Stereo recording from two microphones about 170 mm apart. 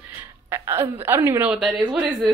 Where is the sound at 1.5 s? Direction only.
5° right (ahead or behind).